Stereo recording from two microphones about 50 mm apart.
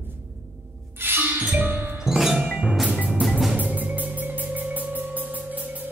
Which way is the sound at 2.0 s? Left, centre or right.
Centre.